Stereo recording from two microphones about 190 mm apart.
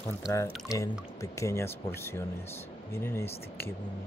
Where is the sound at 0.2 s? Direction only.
15° left (ahead or behind).